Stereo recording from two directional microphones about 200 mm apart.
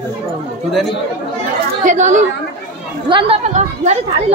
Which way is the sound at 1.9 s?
35° right (ahead or behind).